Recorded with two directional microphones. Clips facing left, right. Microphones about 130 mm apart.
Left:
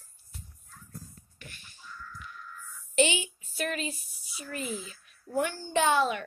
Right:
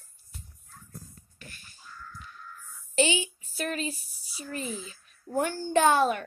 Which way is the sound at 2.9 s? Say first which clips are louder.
Even; 35° right (ahead or behind).